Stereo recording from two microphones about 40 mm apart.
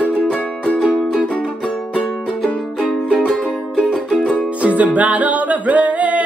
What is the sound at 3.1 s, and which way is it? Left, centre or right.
Music, centre.